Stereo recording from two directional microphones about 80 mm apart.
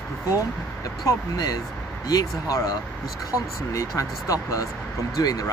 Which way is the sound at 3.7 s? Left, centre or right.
Left.